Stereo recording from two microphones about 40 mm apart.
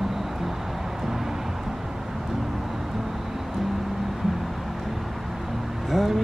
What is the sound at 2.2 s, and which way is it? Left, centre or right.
Vehicle, centre.